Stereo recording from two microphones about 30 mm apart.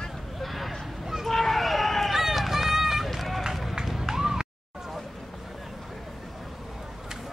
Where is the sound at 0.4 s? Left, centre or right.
Centre.